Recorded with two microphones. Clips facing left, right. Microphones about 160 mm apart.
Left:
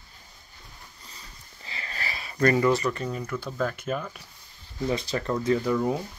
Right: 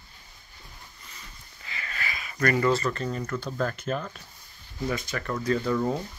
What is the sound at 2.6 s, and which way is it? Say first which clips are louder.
Speech: left 1 dB; 15° left (ahead or behind).